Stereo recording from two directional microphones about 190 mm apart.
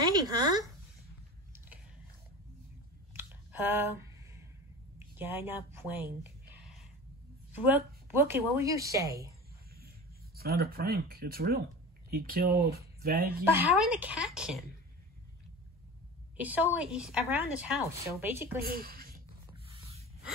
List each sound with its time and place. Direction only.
0.0 s speech: 20° right (ahead or behind)
3.1 s a sound: 10° right (ahead or behind)
4.9 s a sound: 10° right (ahead or behind)
7.6 s speech: 10° right (ahead or behind)
9.8 s speech: 55° right (ahead or behind)
13.5 s speech: 10° right (ahead or behind)
16.3 s speech: 10° right (ahead or behind)
18.6 s a woman's voice: 50° right (ahead or behind)
19.5 s a sound: 30° right (ahead or behind)